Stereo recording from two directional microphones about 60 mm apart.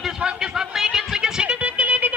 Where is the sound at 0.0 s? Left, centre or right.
Centre.